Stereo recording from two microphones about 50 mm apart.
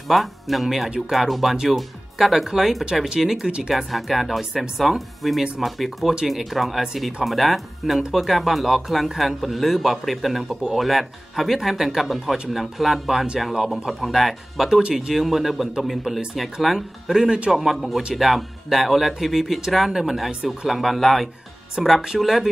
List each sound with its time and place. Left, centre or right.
0.1 s a man's voice: centre
0.8 s speech: centre
1.1 s a man's voice: centre
2.8 s a man's voice: centre
7.2 s a man's voice: centre
22.0 s speech: centre